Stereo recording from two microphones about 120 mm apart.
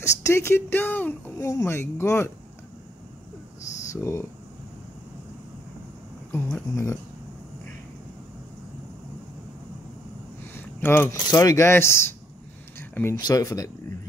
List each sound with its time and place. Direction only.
0.0 s speech: 25° left (ahead or behind)
3.9 s speech: 25° left (ahead or behind)
6.7 s speech: 25° left (ahead or behind)
10.4 s a sound: 15° left (ahead or behind)
11.2 s speech: 30° left (ahead or behind)
12.7 s a sound: 20° left (ahead or behind)
13.1 s speech: 30° left (ahead or behind)